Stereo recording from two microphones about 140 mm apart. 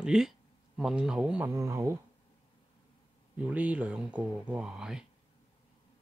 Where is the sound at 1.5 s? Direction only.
20° right (ahead or behind).